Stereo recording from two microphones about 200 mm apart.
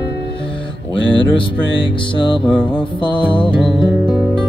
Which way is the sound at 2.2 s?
25° left (ahead or behind).